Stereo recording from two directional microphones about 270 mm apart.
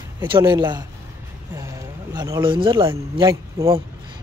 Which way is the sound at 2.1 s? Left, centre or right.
Centre.